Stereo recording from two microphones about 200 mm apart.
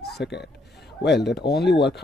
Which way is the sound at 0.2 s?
55° left (ahead or behind).